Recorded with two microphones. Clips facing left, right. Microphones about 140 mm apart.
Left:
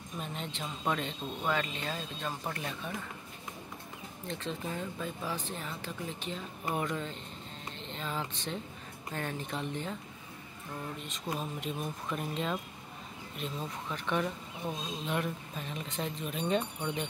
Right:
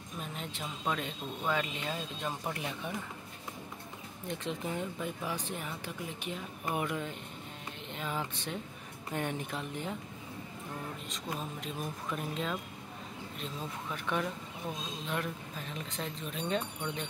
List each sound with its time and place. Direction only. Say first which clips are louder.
0.2 s speech: left 1 dB; 5° right (ahead or behind)
4.3 s speech: right 1 dB; 15° right (ahead or behind)
9.5 s speech: left 2 dB; 5° right (ahead or behind)
11.3 s speech: left 3 dB; 5° left (ahead or behind)